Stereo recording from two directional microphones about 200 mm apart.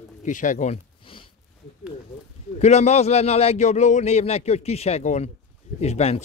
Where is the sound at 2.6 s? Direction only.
35° left (ahead or behind).